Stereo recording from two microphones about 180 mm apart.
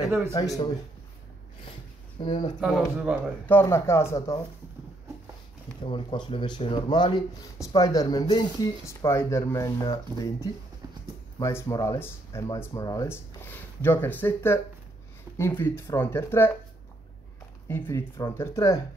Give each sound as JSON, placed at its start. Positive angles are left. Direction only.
{"t": 0.3, "sound": "speech", "side_deg": 25}
{"t": 2.1, "sound": "speech", "side_deg": 25}
{"t": 2.6, "sound": "speech", "side_deg": -5}
{"t": 3.4, "sound": "speech", "side_deg": 15}
{"t": 5.9, "sound": "speech", "side_deg": 30}
{"t": 17.6, "sound": "speech", "side_deg": 10}